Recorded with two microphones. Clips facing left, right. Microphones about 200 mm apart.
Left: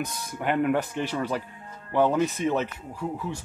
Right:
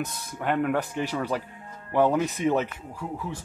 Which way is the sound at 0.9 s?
5° right (ahead or behind).